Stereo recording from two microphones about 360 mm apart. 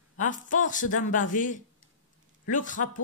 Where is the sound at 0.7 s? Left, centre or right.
Left.